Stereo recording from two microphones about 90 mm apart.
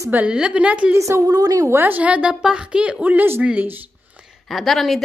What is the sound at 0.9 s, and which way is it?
Speech, 35° right (ahead or behind).